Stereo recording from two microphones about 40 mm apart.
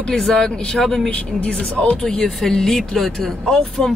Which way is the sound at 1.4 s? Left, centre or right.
Left.